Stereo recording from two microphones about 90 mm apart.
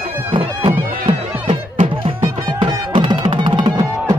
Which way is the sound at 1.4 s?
80° right.